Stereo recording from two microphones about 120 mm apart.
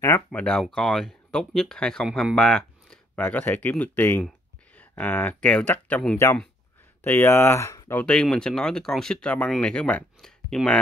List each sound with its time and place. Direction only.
0.3 s speech: 10° left (ahead or behind)
8.0 s speech: 5° left (ahead or behind)